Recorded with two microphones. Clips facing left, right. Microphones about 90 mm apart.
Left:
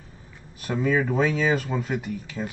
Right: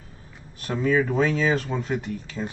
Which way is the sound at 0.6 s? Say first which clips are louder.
Right 1 dB; centre (ahead or behind).